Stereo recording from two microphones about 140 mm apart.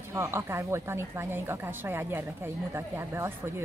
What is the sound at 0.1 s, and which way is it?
A woman's voice, 20° right (ahead or behind).